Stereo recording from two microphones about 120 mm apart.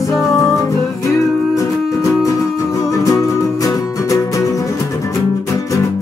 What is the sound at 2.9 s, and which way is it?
Music, 25° left (ahead or behind).